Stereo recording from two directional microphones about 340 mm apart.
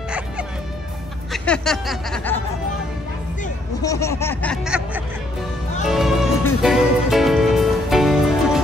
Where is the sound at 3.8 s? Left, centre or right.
Centre.